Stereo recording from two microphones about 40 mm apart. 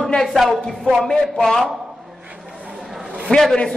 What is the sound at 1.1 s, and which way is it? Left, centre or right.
Speech, centre.